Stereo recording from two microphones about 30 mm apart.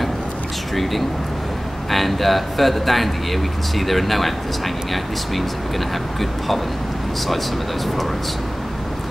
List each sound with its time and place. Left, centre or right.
1.9 s speech: centre